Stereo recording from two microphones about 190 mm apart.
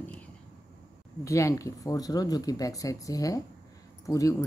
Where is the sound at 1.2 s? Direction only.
15° left (ahead or behind).